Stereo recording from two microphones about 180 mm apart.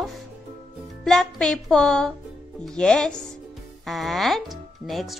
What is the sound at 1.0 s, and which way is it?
Speech, centre (ahead or behind).